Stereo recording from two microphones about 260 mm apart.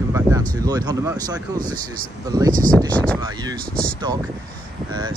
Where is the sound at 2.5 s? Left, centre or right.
Right.